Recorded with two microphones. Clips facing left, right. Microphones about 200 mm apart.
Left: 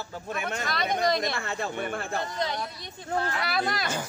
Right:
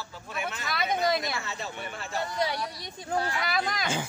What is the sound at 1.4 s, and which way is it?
Speech, 55° left (ahead or behind).